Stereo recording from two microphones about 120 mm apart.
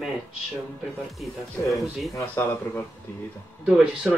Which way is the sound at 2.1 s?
20° left (ahead or behind).